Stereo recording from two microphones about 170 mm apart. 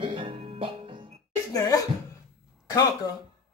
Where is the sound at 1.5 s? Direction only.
20° left (ahead or behind).